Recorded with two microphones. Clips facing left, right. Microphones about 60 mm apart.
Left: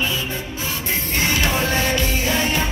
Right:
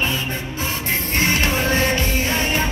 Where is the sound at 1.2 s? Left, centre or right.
Right.